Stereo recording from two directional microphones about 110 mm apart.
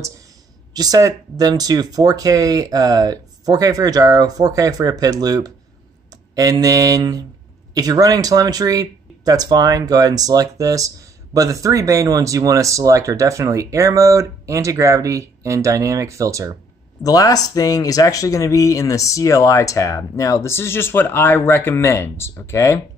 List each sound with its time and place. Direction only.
0.7 s speech: 35° right (ahead or behind)
17.0 s speech: 35° left (ahead or behind)